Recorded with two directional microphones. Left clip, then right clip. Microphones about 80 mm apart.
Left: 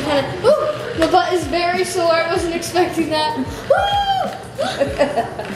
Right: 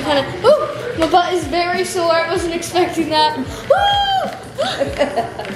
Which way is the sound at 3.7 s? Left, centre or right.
Right.